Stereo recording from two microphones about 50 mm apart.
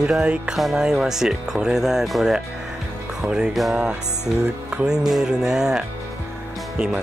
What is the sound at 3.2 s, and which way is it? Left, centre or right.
Speech, centre.